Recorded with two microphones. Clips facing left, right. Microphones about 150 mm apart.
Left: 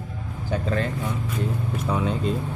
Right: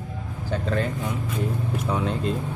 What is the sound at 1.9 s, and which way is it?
Speech, centre (ahead or behind).